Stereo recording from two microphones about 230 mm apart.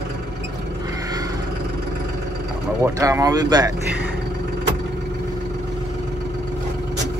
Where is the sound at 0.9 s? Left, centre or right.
Centre.